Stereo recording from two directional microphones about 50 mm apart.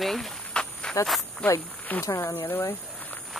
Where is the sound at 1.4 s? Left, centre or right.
Left.